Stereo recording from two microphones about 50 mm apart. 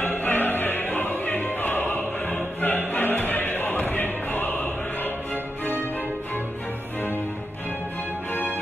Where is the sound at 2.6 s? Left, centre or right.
Left.